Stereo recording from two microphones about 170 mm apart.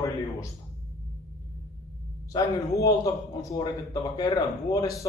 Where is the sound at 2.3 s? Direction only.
20° left (ahead or behind).